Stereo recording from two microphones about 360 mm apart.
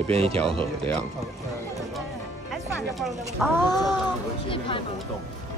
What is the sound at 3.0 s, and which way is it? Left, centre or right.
Speech, centre.